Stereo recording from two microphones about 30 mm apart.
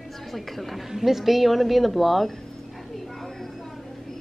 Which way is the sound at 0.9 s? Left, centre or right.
Centre.